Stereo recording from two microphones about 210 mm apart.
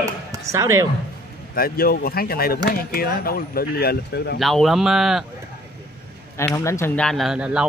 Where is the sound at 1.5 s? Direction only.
45° left (ahead or behind).